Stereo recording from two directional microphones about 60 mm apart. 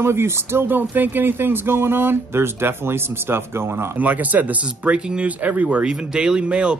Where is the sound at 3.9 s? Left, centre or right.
Right.